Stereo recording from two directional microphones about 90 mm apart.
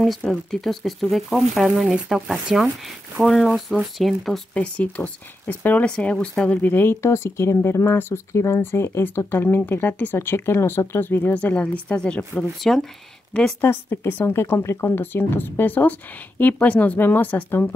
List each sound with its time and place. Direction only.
0.0 s speech: centre (ahead or behind)
4.6 s speech: 15° left (ahead or behind)
13.6 s speech: 25° left (ahead or behind)